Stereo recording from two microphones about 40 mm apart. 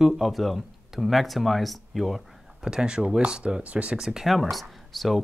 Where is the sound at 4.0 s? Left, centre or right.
Centre.